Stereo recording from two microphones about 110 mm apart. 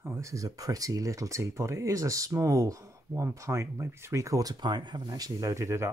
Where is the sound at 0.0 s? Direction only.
25° right (ahead or behind).